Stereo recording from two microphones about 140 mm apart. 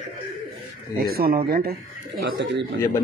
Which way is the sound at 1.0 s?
90° right.